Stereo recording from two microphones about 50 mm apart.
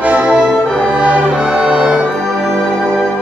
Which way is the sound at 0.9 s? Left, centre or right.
Right.